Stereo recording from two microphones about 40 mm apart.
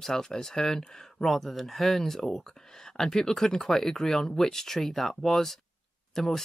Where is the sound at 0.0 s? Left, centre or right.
Centre.